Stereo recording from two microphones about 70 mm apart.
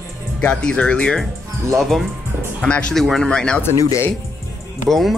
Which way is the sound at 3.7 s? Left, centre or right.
Left.